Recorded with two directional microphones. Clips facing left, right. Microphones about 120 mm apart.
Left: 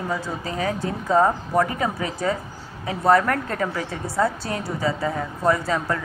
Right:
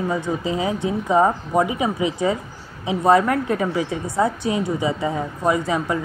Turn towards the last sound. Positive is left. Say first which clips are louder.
# right 2 dB
turn(degrees=-15)  # may be behind; listen again after turning